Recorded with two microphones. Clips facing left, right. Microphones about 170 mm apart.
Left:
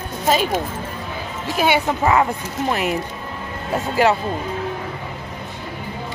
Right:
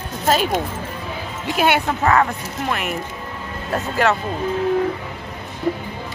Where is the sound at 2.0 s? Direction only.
15° left (ahead or behind).